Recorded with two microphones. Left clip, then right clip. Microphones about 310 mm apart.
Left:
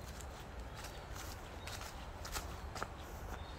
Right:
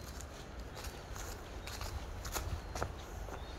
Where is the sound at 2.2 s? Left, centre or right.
Right.